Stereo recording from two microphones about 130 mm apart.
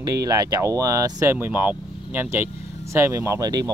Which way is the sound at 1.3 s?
15° right (ahead or behind).